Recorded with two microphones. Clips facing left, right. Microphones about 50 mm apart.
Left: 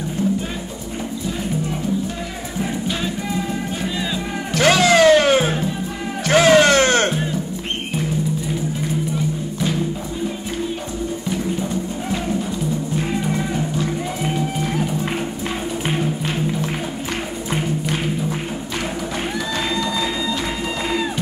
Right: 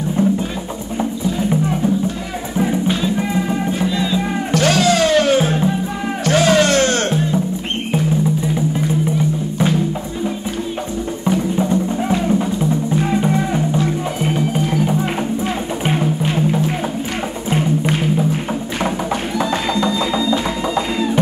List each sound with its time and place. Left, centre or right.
0.2 s music: right
3.9 s music: centre
4.6 s music: left
11.2 s music: right
19.3 s music: right